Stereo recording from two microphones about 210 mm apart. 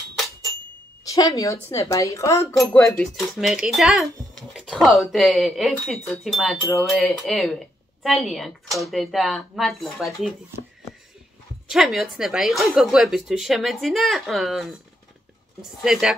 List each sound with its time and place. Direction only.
1.0 s a woman's voice: 15° left (ahead or behind)
2.9 s speech: centre (ahead or behind)
11.7 s speech: centre (ahead or behind)
15.8 s speech: centre (ahead or behind)